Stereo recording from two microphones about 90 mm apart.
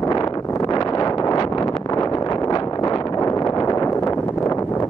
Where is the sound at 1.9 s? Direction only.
40° left (ahead or behind).